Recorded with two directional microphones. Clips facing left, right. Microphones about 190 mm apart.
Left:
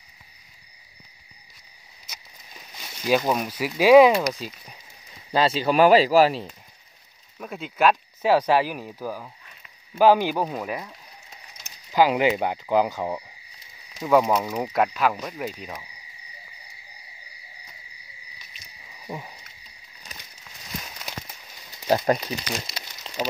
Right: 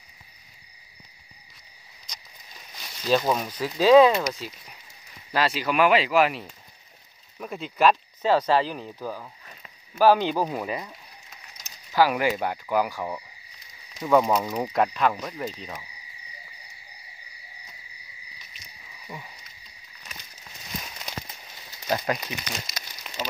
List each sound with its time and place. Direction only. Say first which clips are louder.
3.1 s speech: left 1 dB; 10° left (ahead or behind)
5.3 s speech: left 4 dB; 25° left (ahead or behind)
7.3 s speech: even; centre (ahead or behind)
10.3 s speech: even; centre (ahead or behind)
11.9 s speech: left 2 dB; 20° left (ahead or behind)
14.0 s speech: left 1 dB; 5° left (ahead or behind)
19.1 s speech: left 6 dB; 35° left (ahead or behind)
21.8 s speech: left 6 dB; 30° left (ahead or behind)
22.3 s a sound: left 4 dB; 30° left (ahead or behind)